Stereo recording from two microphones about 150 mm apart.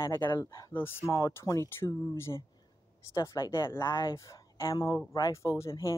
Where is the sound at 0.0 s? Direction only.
20° left (ahead or behind).